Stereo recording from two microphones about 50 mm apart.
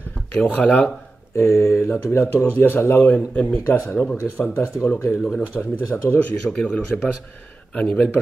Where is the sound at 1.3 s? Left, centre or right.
Left.